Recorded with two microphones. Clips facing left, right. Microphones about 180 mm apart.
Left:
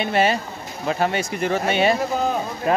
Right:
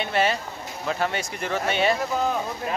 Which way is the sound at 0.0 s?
10° left (ahead or behind).